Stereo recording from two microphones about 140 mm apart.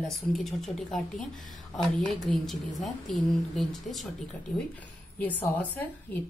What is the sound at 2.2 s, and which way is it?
A woman's voice, centre (ahead or behind).